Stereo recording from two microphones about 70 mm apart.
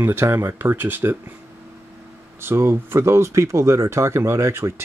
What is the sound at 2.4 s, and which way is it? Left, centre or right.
Speech, right.